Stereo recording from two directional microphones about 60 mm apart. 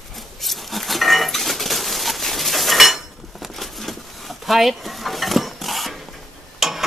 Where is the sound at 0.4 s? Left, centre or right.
Centre.